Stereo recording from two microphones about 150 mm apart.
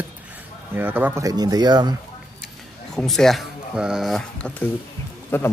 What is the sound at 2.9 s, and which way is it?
Speech, 5° left (ahead or behind).